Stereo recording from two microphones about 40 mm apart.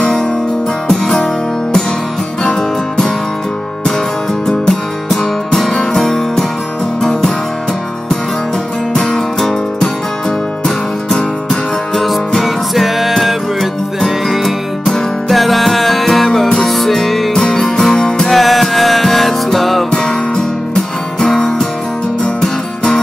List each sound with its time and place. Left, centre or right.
1.0 s music: centre
4.5 s music: centre
8.9 s music: centre
11.9 s music: centre
18.3 s music: centre
19.9 s music: centre